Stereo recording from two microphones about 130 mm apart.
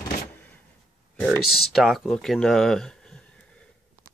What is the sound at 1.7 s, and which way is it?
Speech, centre (ahead or behind).